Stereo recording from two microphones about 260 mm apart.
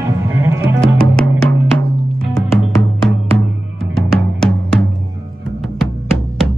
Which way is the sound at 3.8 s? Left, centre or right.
Centre.